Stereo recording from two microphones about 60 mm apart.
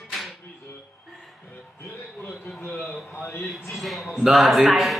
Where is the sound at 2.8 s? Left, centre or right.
Left.